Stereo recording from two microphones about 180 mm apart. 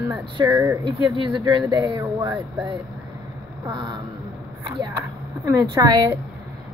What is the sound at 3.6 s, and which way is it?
Speech, 25° right (ahead or behind).